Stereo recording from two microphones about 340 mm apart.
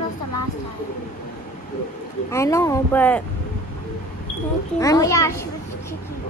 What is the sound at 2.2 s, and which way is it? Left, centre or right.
Speech, centre.